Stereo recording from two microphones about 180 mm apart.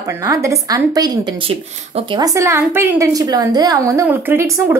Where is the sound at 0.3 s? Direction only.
15° right (ahead or behind).